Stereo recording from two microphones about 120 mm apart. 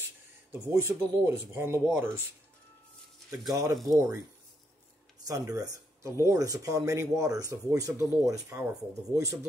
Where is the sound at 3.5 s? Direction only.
30° right (ahead or behind).